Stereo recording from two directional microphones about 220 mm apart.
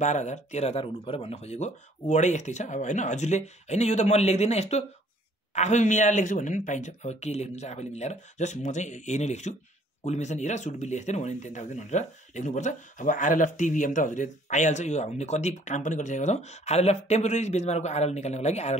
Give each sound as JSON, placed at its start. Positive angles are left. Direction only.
{"t": 0.0, "sound": "speech", "side_deg": 30}